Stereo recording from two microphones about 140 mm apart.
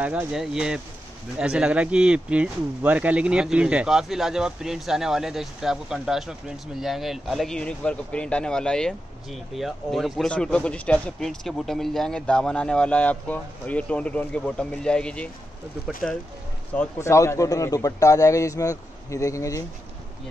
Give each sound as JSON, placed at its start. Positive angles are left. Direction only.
{"t": 0.0, "sound": "speech", "side_deg": -10}
{"t": 16.7, "sound": "a man's voice", "side_deg": 20}